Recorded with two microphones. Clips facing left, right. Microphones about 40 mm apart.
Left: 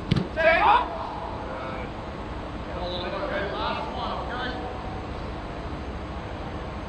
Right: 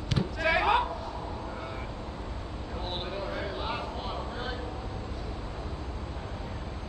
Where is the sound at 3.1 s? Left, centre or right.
Left.